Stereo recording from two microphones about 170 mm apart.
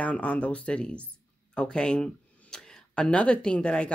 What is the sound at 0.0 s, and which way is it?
Speech, 5° left (ahead or behind).